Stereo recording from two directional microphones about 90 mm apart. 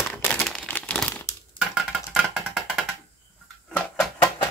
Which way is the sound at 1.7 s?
5° right (ahead or behind).